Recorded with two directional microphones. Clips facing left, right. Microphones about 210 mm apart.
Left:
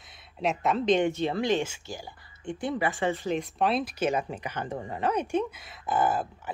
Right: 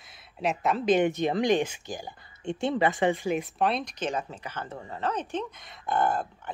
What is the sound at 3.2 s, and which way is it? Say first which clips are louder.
Speech: even; 5° right (ahead or behind).